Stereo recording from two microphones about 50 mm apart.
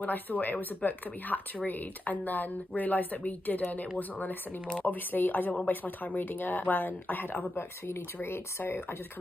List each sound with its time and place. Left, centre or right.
0.0 s speech: left
7.5 s speech: left